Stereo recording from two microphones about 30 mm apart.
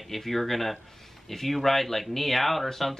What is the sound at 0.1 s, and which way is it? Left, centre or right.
Speech, centre.